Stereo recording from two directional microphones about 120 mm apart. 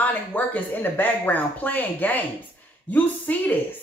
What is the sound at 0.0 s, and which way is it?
Speech, 15° left (ahead or behind).